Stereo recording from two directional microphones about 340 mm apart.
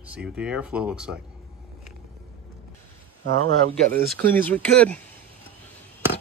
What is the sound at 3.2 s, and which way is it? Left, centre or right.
Speech, right.